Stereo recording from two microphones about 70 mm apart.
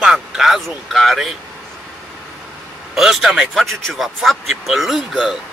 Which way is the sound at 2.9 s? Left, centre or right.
Centre.